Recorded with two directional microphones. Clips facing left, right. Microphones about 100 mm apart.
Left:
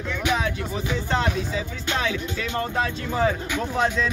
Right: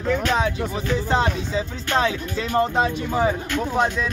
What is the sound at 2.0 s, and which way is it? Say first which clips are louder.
Speech: right 6 dB; 35° right (ahead or behind).